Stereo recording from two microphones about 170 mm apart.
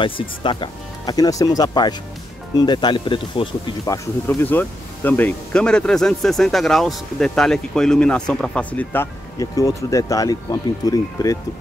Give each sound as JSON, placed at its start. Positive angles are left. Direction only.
{"t": 0.0, "sound": "speech", "side_deg": 30}